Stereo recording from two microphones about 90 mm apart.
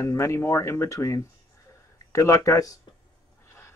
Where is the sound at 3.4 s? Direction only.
30° left (ahead or behind).